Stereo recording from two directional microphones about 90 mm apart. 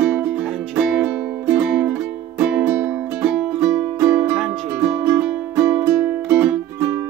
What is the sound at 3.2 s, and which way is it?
Music, 5° right (ahead or behind).